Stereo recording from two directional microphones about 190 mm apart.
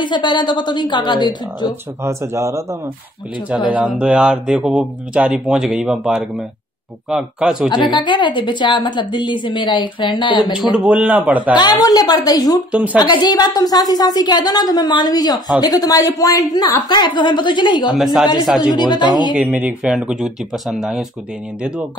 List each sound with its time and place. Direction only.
0.0 s a woman's voice: 25° left (ahead or behind)
2.0 s a man's voice: 15° right (ahead or behind)
3.7 s speech: 5° right (ahead or behind)
7.7 s a woman's voice: 25° left (ahead or behind)
10.6 s a man's voice: 5° right (ahead or behind)
11.5 s a woman's voice: 20° left (ahead or behind)
12.7 s a man's voice: 5° right (ahead or behind)
13.0 s a woman's voice: 20° left (ahead or behind)
17.9 s speech: centre (ahead or behind)
18.6 s a woman's voice: 20° left (ahead or behind)
19.3 s speech: 5° right (ahead or behind)